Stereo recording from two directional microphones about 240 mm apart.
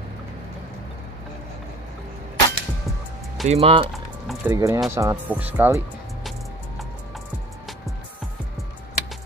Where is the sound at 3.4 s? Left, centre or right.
Right.